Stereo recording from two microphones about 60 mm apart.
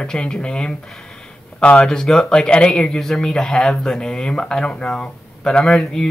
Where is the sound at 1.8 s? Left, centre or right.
Centre.